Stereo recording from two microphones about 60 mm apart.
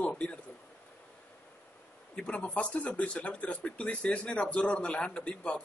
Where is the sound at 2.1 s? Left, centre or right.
Centre.